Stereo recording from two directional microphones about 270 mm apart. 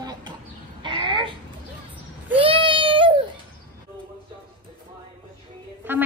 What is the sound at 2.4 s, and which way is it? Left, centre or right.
Child singing, centre.